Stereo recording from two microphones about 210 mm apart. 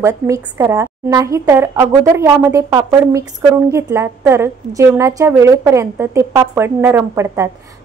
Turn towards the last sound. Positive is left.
turn(degrees=-10)  # may be behind; listen again after turning